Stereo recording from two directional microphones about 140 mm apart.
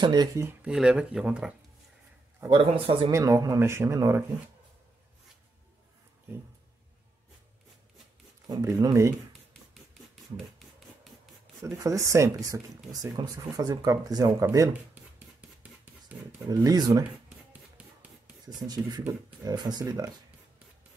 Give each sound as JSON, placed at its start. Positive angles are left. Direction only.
{"t": 0.0, "sound": "speech", "side_deg": -30}
{"t": 0.4, "sound": "speech", "side_deg": -15}
{"t": 2.5, "sound": "speech", "side_deg": -40}
{"t": 3.1, "sound": "speech", "side_deg": -20}
{"t": 8.5, "sound": "speech", "side_deg": -25}
{"t": 11.6, "sound": "speech", "side_deg": -25}
{"t": 14.7, "sound": "a sound", "side_deg": -10}
{"t": 16.4, "sound": "speech", "side_deg": -30}
{"t": 17.5, "sound": "a sound", "side_deg": -10}
{"t": 18.4, "sound": "speech", "side_deg": -30}